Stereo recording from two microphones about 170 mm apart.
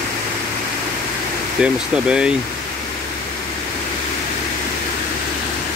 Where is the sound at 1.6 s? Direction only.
5° right (ahead or behind).